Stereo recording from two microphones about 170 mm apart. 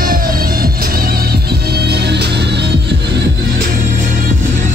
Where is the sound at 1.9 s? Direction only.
80° right.